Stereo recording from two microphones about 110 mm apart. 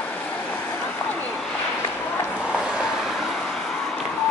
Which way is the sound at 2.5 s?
5° right (ahead or behind).